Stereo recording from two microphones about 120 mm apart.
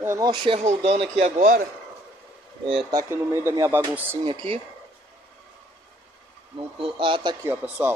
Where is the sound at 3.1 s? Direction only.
20° right (ahead or behind).